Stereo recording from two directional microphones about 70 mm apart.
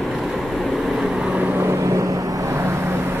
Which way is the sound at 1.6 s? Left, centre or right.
Right.